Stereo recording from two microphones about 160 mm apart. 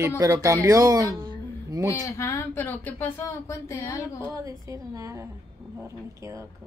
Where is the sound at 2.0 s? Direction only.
20° left (ahead or behind).